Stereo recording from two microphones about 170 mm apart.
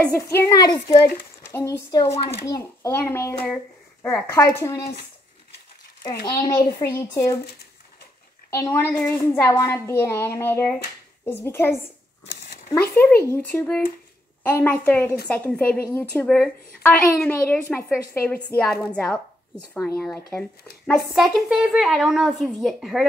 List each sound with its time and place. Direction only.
0.0 s a woman's voice: 15° left (ahead or behind)
6.2 s a woman's voice: 20° left (ahead or behind)
8.5 s a woman's voice: 10° left (ahead or behind)
13.2 s a woman's voice: 15° left (ahead or behind)